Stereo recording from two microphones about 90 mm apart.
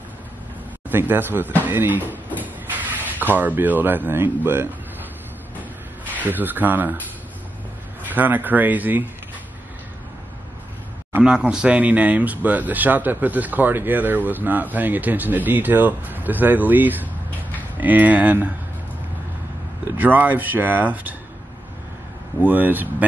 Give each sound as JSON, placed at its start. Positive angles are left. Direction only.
{"t": 0.8, "sound": "speech", "side_deg": -20}
{"t": 2.4, "sound": "a sound", "side_deg": -20}
{"t": 3.3, "sound": "speech", "side_deg": -20}
{"t": 6.2, "sound": "speech", "side_deg": -20}
{"t": 8.1, "sound": "speech", "side_deg": -20}
{"t": 11.2, "sound": "speech", "side_deg": -10}
{"t": 20.0, "sound": "speech", "side_deg": -20}
{"t": 22.5, "sound": "speech", "side_deg": -20}